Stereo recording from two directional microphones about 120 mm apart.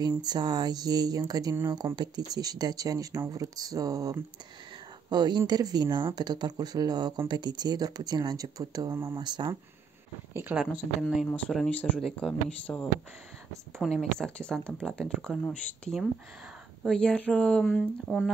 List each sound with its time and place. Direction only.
0.2 s speech: 35° right (ahead or behind)
9.1 s speech: 40° right (ahead or behind)
10.5 s speech: 15° right (ahead or behind)
11.0 s speech: centre (ahead or behind)
11.2 s speech: 10° left (ahead or behind)